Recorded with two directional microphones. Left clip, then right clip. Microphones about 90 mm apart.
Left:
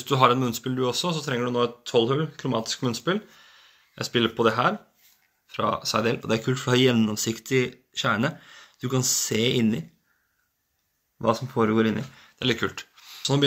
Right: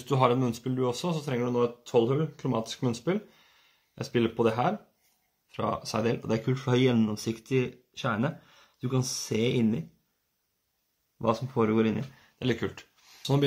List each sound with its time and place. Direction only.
0.0 s speech: 35° right (ahead or behind)
6.4 s speech: 10° right (ahead or behind)
11.2 s speech: 5° right (ahead or behind)
12.1 s a sound: 30° right (ahead or behind)